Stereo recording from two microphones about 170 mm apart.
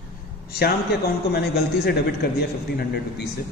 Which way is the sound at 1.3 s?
70° left (ahead or behind).